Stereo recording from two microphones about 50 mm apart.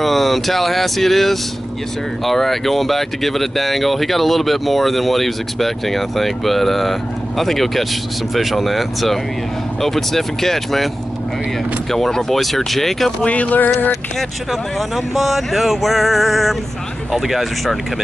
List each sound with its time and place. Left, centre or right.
0.0 s speech: centre
11.9 s speech: centre
13.2 s speech: left
14.5 s speech: centre